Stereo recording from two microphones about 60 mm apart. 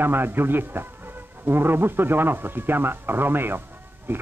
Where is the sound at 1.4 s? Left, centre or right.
Right.